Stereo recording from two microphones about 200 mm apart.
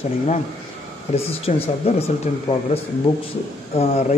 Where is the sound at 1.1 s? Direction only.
30° left (ahead or behind).